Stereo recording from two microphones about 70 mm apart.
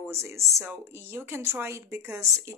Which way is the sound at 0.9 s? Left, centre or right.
Right.